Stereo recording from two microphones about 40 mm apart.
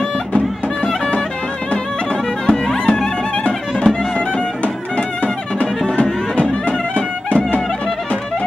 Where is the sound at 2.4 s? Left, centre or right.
Centre.